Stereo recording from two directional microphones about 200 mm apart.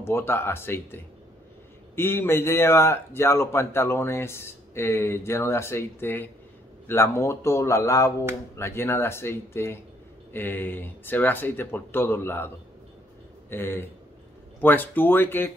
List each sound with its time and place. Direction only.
0.0 s a man's voice: 10° left (ahead or behind)
13.5 s a man's voice: 10° left (ahead or behind)